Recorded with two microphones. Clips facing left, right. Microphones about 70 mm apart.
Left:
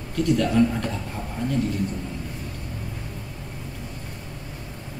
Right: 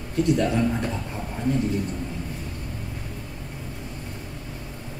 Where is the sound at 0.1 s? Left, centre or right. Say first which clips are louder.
Even; right.